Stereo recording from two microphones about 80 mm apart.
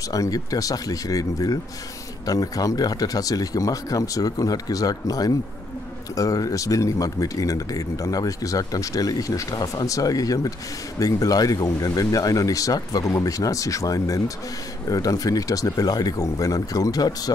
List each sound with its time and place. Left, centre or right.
0.1 s speech: left